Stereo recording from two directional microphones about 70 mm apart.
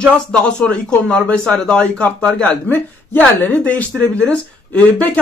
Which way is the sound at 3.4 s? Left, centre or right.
Left.